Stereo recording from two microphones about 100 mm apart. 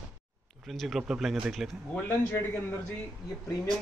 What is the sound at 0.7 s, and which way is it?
Speech, centre (ahead or behind).